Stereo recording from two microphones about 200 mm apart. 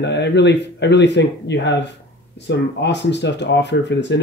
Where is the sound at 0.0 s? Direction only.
60° left (ahead or behind).